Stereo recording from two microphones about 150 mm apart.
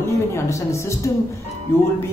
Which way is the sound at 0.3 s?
20° left (ahead or behind).